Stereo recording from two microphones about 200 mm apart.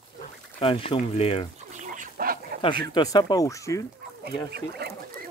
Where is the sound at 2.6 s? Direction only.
20° left (ahead or behind).